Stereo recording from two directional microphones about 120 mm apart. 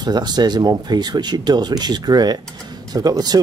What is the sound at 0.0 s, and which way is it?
Speech, 35° right (ahead or behind).